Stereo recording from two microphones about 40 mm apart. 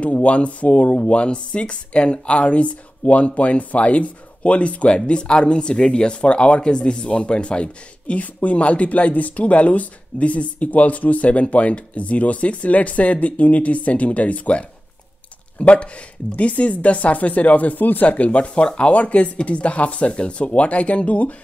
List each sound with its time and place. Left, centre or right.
0.0 s speech: left